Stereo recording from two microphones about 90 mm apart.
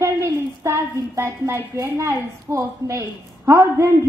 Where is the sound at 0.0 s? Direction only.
30° right (ahead or behind).